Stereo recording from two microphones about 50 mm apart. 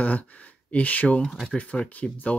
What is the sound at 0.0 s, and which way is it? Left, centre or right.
Speech, left.